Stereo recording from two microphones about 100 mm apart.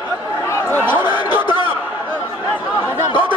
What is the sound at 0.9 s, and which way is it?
Speech, 55° left (ahead or behind).